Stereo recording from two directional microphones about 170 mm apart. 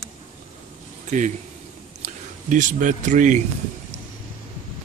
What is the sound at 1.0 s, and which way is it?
A man's voice, 45° right (ahead or behind).